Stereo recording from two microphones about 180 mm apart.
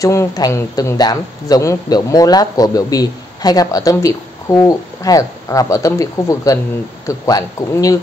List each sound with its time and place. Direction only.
0.0 s speech: 15° left (ahead or behind)